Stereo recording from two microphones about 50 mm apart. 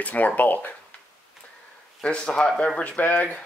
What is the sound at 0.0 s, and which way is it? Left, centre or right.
Speech, left.